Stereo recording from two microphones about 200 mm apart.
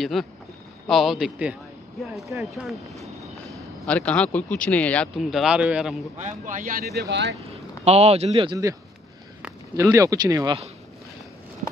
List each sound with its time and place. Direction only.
0.0 s speech: centre (ahead or behind)
6.1 s speech: 40° right (ahead or behind)
7.0 s speech: 60° right (ahead or behind)
7.8 s speech: 30° right (ahead or behind)